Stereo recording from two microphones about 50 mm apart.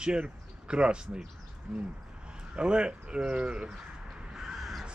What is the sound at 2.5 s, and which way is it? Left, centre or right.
Speech, centre.